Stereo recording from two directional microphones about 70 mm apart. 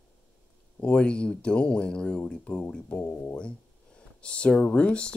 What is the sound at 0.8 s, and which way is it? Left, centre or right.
Speech, centre.